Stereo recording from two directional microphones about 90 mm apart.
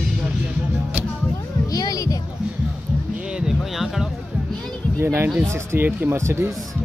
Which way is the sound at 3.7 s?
5° right (ahead or behind).